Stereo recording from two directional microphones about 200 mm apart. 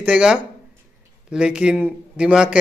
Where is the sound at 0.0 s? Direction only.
5° right (ahead or behind).